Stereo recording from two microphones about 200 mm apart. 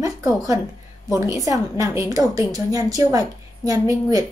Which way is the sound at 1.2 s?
15° right (ahead or behind).